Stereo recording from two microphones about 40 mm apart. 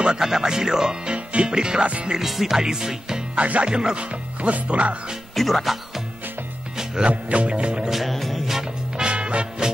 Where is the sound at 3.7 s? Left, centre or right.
Right.